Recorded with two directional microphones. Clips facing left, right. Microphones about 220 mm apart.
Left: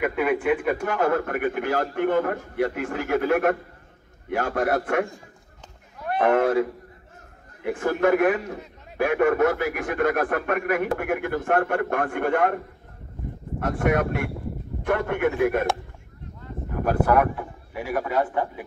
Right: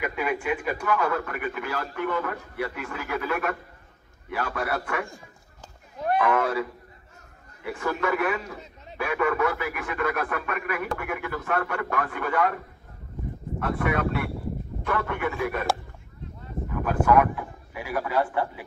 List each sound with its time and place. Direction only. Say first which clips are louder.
0.0 s a man's voice: left 5 dB; 55° left (ahead or behind)
6.2 s a man's voice: left 9 dB; 50° left (ahead or behind)
17.0 s speech: right 1 dB; 35° left (ahead or behind)
18.1 s a man's voice: even; 20° left (ahead or behind)